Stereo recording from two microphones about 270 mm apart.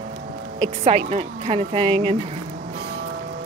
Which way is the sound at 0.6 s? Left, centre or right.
Right.